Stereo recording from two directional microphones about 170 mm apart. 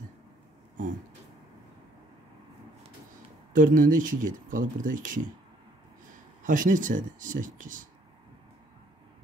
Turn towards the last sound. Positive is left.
turn(degrees=-50)  # may be behind; listen again after turning